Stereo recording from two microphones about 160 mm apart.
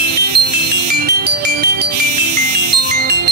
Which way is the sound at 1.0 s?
80° right.